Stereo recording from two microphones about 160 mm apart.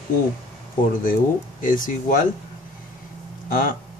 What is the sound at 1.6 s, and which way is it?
Speech, 55° left (ahead or behind).